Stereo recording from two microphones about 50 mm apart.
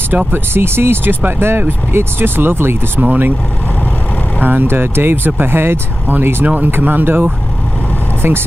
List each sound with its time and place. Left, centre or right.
0.3 s speech: right
3.0 s speech: right
4.4 s speech: right